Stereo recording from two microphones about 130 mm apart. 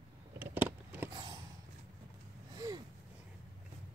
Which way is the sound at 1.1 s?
30° right (ahead or behind).